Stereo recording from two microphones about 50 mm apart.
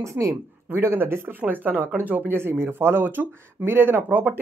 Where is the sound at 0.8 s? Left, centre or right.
Right.